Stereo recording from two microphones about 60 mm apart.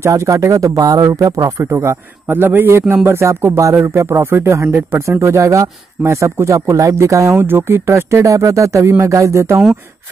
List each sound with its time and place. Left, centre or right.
0.0 s a man's voice: right
3.3 s a man's voice: right
7.3 s a man's voice: right